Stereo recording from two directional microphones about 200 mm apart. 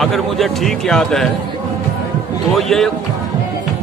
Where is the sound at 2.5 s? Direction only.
Centre (ahead or behind).